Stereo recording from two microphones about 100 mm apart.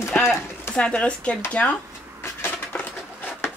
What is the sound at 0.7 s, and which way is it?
Speech, 10° left (ahead or behind).